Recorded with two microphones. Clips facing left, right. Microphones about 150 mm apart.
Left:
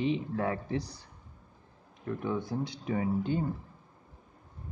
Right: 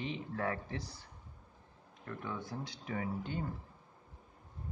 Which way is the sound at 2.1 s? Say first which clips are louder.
Left 9 dB; 20° left (ahead or behind).